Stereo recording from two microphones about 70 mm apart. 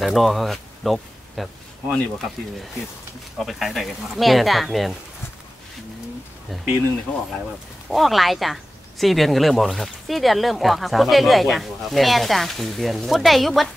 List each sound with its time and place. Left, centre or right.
0.0 s speech: centre
3.3 s speech: centre
6.5 s speech: centre
7.1 s speech: left
7.9 s speech: centre